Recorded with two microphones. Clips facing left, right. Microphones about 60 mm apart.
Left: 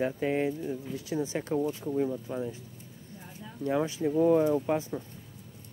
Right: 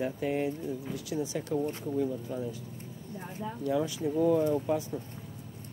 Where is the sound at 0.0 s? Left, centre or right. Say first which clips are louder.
Left 2 dB; left.